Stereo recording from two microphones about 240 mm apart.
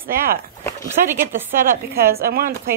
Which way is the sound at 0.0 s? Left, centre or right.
Right.